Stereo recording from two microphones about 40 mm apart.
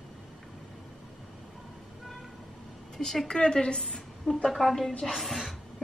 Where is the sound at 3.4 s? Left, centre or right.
Left.